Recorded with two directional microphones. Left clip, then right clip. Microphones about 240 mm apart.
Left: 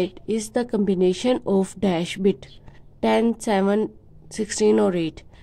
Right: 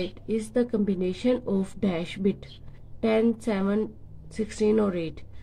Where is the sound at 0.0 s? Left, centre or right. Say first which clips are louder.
Left 5 dB; left.